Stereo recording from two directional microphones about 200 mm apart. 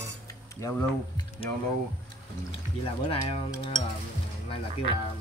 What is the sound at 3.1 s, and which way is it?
Speech, 30° left (ahead or behind).